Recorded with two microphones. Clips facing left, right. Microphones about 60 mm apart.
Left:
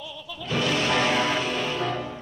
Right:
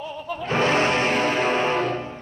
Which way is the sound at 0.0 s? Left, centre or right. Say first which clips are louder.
Right 7 dB; right.